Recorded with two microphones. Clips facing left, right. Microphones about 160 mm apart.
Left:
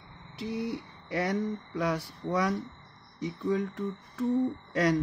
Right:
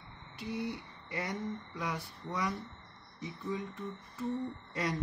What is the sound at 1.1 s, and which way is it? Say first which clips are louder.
Speech: left 8 dB; 75° left (ahead or behind).